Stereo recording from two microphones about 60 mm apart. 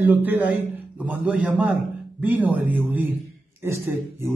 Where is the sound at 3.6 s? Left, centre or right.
Right.